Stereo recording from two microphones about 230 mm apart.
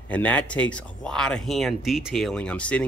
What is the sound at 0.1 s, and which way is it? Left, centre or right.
Speech, centre.